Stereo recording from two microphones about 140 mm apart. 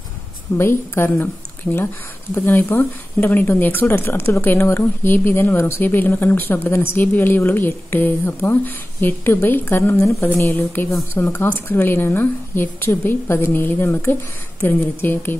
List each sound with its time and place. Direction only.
0.6 s a woman's voice: 15° left (ahead or behind)